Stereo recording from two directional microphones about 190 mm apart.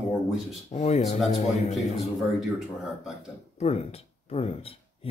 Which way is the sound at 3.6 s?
35° left (ahead or behind).